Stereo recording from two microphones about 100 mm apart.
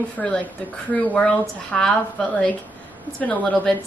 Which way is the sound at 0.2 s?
5° left (ahead or behind).